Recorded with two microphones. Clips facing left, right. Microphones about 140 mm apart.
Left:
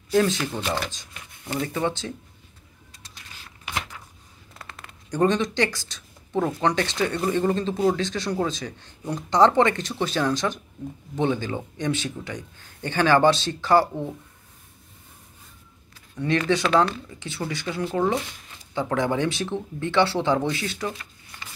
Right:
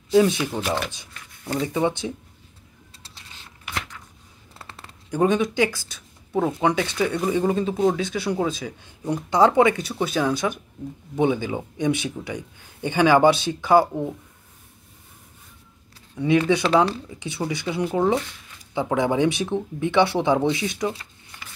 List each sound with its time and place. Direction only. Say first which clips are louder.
0.1 s a man's voice: right 3 dB; 10° right (ahead or behind)
3.0 s music: left 1 dB; 30° right (ahead or behind)
4.6 s a sound: even; 30° right (ahead or behind)
5.1 s a man's voice: right 1 dB; 10° right (ahead or behind)
16.2 s a man's voice: right 3 dB; 10° right (ahead or behind)
16.6 s speech: right 2 dB; 30° right (ahead or behind)
17.1 s a man's voice: right 3 dB; 15° right (ahead or behind)